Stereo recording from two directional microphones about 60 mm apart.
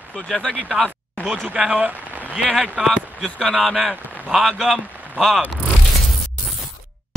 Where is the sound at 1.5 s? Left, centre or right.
Right.